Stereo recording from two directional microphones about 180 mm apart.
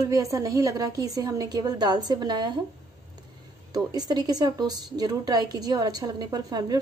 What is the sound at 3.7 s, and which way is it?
A woman's voice, 20° right (ahead or behind).